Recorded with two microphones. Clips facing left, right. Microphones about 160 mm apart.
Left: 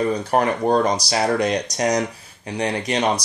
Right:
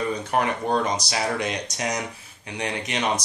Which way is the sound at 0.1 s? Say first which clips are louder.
Left 5 dB; 40° left (ahead or behind).